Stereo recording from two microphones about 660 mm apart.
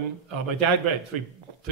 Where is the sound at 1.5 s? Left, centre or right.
Right.